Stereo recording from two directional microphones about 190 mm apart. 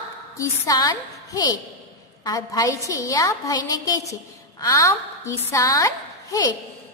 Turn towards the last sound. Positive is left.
turn(degrees=15)  # may be behind; listen again after turning